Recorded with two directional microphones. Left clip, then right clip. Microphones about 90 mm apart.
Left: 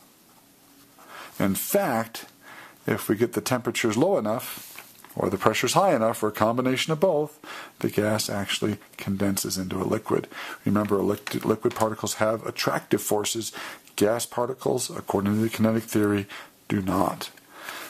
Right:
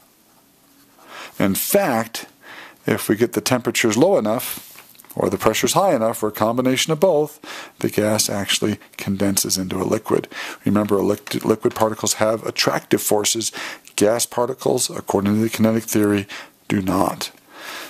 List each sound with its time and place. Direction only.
1.1 s speech: 30° right (ahead or behind)